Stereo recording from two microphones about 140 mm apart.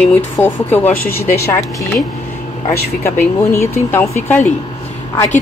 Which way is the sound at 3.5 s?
15° left (ahead or behind).